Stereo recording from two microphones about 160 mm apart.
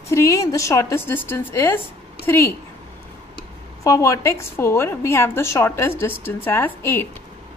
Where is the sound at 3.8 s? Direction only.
20° left (ahead or behind).